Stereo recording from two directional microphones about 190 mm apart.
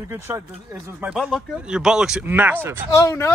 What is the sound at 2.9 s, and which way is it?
Speech, 15° left (ahead or behind).